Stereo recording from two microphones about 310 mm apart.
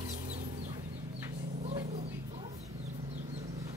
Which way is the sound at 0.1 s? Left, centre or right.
Right.